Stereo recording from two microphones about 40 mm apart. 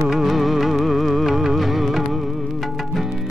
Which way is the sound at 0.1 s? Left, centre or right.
Centre.